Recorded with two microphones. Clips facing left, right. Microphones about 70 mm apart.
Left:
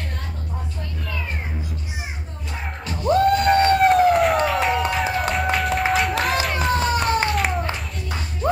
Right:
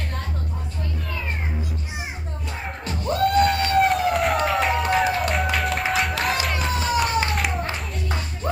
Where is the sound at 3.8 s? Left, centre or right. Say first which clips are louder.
Left 5 dB; centre.